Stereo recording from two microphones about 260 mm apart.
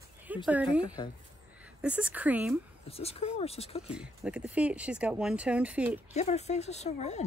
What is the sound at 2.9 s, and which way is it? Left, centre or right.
Speech, left.